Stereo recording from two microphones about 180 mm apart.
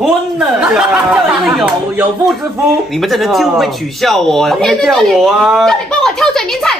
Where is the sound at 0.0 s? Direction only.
5° right (ahead or behind).